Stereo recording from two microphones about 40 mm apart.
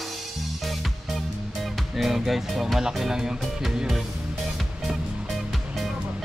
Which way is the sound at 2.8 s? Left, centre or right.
Centre.